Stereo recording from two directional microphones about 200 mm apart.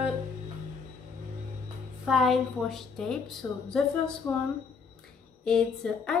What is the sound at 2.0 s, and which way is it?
A woman's voice, centre (ahead or behind).